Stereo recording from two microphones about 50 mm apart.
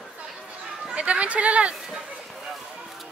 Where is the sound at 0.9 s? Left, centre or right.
Right.